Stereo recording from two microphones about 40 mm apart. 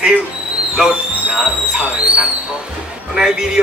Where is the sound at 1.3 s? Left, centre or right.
Centre.